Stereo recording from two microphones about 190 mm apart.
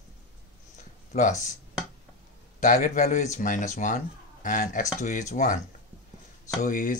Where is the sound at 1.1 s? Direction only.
40° left (ahead or behind).